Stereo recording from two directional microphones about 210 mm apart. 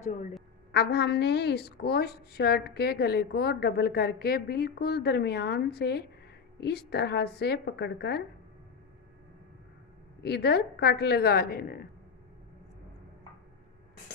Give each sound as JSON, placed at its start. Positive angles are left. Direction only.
{"t": 0.0, "sound": "a woman's voice", "side_deg": 35}
{"t": 0.7, "sound": "a woman's voice", "side_deg": 55}
{"t": 10.2, "sound": "a woman's voice", "side_deg": 50}